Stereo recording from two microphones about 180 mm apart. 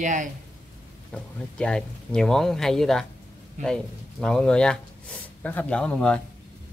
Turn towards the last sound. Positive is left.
turn(degrees=5)  # may be behind; listen again after turning